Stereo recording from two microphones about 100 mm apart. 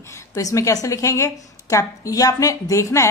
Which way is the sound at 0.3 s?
35° left (ahead or behind).